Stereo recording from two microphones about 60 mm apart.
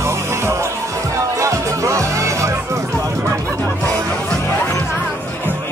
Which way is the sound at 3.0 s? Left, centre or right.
Right.